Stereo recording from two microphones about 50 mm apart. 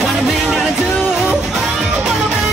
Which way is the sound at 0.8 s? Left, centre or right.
Left.